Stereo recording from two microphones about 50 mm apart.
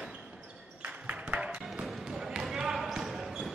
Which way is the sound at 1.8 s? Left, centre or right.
Centre.